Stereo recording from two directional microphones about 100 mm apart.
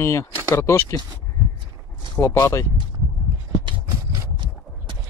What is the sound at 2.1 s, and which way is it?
Speech, 25° left (ahead or behind).